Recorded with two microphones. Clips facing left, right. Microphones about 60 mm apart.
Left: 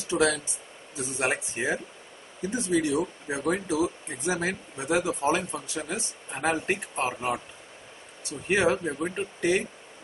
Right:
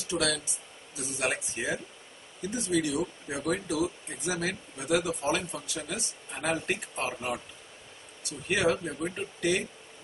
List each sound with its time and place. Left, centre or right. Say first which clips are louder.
0.1 s speech: left 5 dB; left